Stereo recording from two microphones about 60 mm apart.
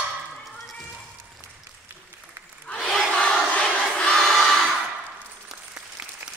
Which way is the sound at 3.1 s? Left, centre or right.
Centre.